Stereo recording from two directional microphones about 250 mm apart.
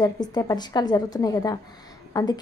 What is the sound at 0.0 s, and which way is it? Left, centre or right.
A woman's voice, centre.